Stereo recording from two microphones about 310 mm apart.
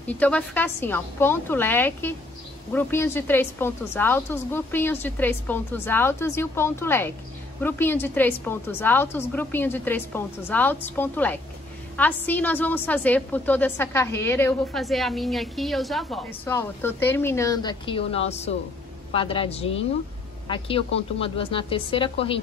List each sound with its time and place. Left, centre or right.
0.0 s a woman's voice: centre